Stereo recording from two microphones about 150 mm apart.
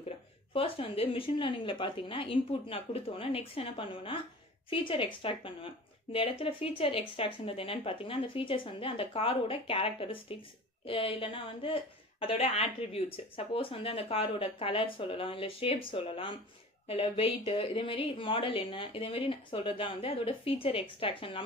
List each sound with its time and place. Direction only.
0.5 s a woman's voice: 40° left (ahead or behind)